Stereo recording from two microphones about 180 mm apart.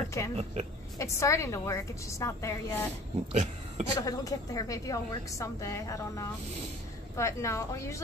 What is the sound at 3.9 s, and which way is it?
A woman's voice, 20° left (ahead or behind).